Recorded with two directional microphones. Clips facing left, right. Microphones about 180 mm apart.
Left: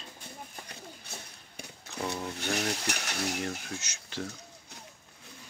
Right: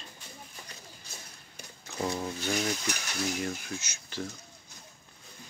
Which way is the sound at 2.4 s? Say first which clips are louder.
Right 1 dB; 70° left (ahead or behind).